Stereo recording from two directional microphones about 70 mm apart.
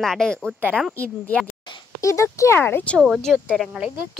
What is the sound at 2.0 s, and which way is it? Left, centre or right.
Speech, left.